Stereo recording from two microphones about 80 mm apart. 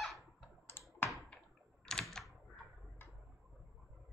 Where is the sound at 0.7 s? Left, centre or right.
Left.